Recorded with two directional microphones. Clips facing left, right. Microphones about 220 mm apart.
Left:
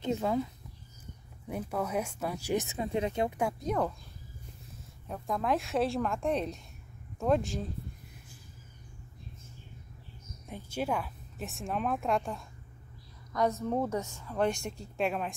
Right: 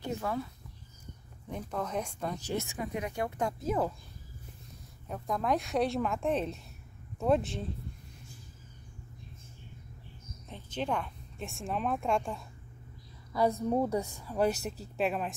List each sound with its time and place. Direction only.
0.0 s speech: 20° left (ahead or behind)
1.5 s speech: 10° left (ahead or behind)
3.3 s speech: 5° left (ahead or behind)
3.6 s speech: 5° right (ahead or behind)
5.0 s speech: centre (ahead or behind)
10.5 s speech: 10° left (ahead or behind)
13.3 s speech: 10° right (ahead or behind)